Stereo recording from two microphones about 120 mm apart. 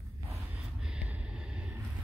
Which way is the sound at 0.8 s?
5° right (ahead or behind).